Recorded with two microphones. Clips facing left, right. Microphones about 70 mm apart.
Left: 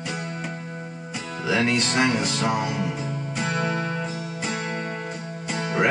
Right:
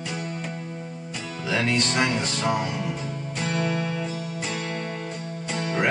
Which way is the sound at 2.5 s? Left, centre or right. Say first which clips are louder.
Left 1 dB; centre.